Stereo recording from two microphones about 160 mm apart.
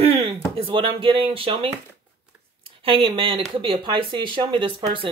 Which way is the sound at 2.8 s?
35° right (ahead or behind).